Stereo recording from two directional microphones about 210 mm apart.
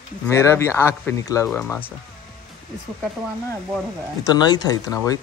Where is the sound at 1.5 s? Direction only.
5° left (ahead or behind).